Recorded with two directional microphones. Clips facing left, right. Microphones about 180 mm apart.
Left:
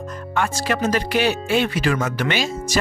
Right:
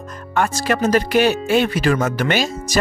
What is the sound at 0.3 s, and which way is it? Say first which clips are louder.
Speech: right 3 dB; 45° right (ahead or behind).